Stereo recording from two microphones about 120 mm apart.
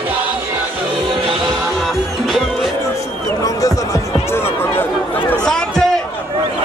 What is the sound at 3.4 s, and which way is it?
Music, 25° left (ahead or behind).